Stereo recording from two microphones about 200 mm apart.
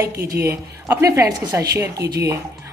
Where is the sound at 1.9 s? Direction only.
55° right (ahead or behind).